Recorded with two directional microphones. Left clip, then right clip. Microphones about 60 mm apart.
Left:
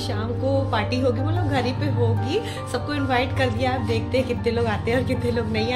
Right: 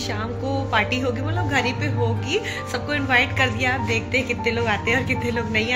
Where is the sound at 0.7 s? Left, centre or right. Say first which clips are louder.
Right 1 dB; centre.